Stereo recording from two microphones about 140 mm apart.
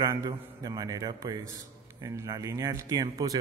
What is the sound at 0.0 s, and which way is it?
A man's voice, 25° right (ahead or behind).